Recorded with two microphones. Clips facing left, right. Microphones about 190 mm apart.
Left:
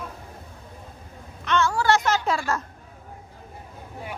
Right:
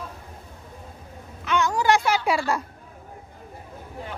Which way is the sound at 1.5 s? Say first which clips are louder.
Even; 15° right (ahead or behind).